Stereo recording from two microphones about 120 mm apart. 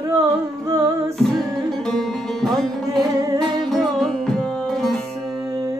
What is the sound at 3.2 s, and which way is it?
Music, 30° right (ahead or behind).